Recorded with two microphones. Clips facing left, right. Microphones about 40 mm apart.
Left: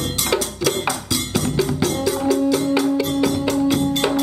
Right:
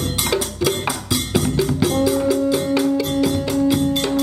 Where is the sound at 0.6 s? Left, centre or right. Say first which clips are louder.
Even; centre.